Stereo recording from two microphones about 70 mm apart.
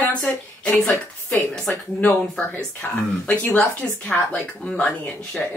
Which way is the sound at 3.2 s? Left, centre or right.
Left.